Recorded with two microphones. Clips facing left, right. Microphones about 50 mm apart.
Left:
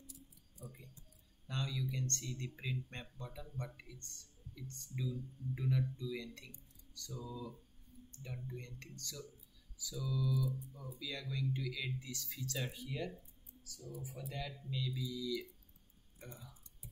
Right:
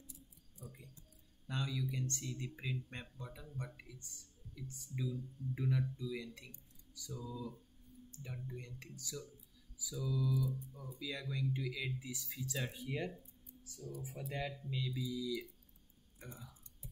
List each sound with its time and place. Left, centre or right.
1.5 s speech: centre
7.2 s speech: centre
8.1 s speech: centre
9.9 s speech: centre
12.8 s speech: right
14.3 s speech: right